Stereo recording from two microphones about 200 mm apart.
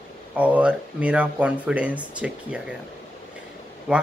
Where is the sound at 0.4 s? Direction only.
5° right (ahead or behind).